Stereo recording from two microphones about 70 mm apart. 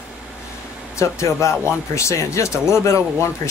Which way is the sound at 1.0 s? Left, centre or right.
Left.